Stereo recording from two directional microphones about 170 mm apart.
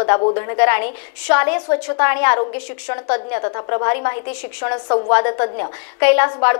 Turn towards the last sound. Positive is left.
turn(degrees=25)  # may be behind; listen again after turning